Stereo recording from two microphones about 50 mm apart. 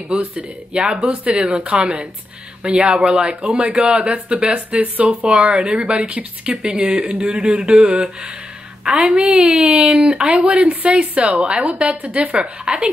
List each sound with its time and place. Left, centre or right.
0.2 s speech: right
0.8 s speech: centre
1.2 s speech: right